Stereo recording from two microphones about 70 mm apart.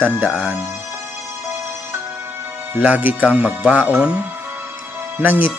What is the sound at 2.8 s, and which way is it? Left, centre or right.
Speech, right.